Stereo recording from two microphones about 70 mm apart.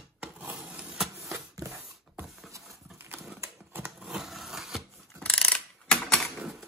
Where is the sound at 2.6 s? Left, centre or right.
Centre.